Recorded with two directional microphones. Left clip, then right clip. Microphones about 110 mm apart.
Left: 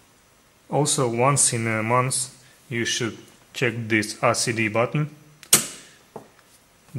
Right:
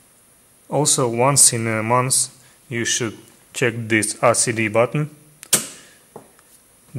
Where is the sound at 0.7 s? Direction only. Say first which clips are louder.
Right 3 dB; 30° right (ahead or behind).